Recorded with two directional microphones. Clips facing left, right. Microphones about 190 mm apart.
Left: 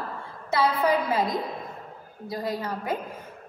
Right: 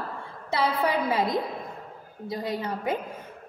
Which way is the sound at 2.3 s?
25° right (ahead or behind).